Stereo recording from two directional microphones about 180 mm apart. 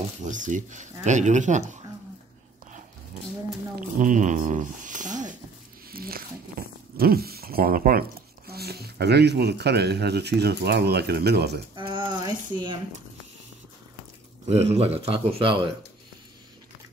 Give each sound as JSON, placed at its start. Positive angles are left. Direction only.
{"t": 0.2, "sound": "speech", "side_deg": -45}
{"t": 3.8, "sound": "speech", "side_deg": -45}
{"t": 5.9, "sound": "a sound", "side_deg": -55}
{"t": 7.0, "sound": "speech", "side_deg": -55}
{"t": 11.7, "sound": "speech", "side_deg": -25}
{"t": 14.4, "sound": "speech", "side_deg": -35}